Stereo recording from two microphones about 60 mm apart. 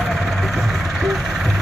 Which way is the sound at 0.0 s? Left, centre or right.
Centre.